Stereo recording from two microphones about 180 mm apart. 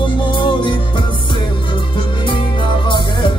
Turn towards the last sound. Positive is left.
turn(degrees=25)  # may be behind; listen again after turning